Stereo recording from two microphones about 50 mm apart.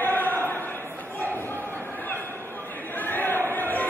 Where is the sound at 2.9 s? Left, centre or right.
Left.